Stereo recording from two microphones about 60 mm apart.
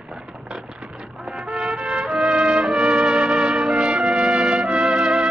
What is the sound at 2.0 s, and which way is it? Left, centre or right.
Brass instrument, centre.